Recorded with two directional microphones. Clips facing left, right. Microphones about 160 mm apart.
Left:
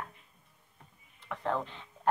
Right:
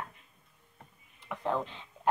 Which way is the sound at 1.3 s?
15° right (ahead or behind).